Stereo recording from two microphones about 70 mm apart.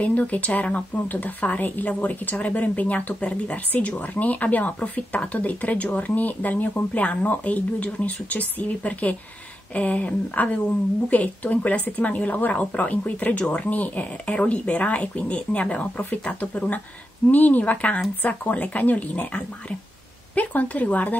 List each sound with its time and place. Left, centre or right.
0.0 s a woman's voice: left